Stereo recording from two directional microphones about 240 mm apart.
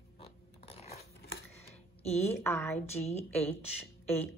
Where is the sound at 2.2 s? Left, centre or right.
Centre.